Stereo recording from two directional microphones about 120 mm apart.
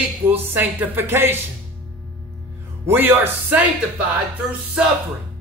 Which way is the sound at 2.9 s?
15° right (ahead or behind).